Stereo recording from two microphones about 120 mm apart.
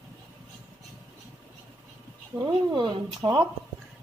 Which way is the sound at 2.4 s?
40° right (ahead or behind).